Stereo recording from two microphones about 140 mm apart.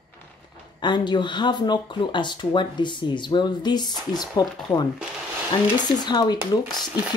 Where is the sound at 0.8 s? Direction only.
35° left (ahead or behind).